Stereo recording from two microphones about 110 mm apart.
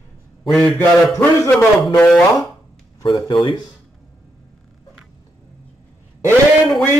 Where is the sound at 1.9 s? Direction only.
10° left (ahead or behind).